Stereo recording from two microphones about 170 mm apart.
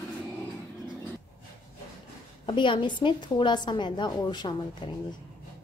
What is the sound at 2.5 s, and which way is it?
A woman's voice, 30° left (ahead or behind).